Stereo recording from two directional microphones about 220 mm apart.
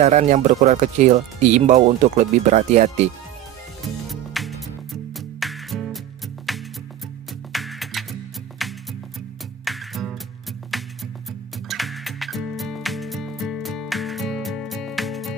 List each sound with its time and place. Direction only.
0.0 s speech: 30° right (ahead or behind)
4.1 s music: centre (ahead or behind)